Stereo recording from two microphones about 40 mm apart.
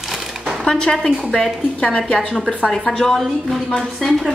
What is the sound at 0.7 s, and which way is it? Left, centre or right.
A woman's voice, centre.